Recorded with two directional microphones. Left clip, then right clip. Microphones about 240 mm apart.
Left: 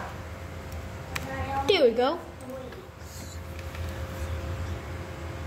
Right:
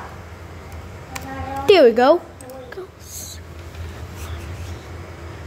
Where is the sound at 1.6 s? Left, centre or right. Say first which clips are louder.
Right 11 dB; right.